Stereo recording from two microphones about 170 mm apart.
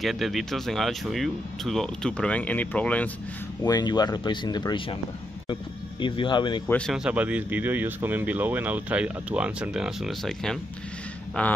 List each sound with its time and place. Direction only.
0.0 s speech: centre (ahead or behind)
3.6 s speech: 25° left (ahead or behind)
6.7 s speech: centre (ahead or behind)